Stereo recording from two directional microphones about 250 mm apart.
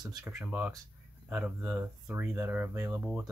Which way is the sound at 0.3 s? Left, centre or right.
Centre.